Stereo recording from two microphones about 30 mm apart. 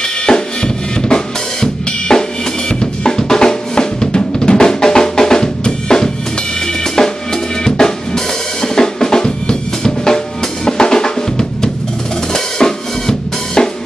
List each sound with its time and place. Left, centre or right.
0.3 s drum kit: left
2.8 s drum: left
7.0 s drum kit: left